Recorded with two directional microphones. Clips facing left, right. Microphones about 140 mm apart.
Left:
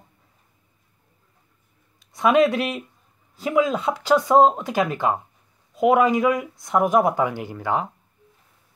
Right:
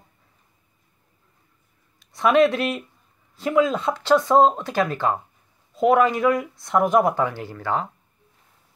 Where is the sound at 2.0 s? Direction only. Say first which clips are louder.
Even; centre (ahead or behind).